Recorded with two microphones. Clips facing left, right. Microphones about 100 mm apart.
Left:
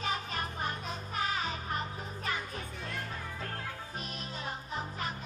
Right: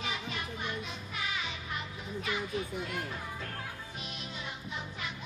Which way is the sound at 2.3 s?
40° left (ahead or behind).